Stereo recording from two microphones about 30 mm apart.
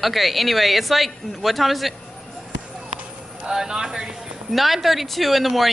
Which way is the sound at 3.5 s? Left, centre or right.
Right.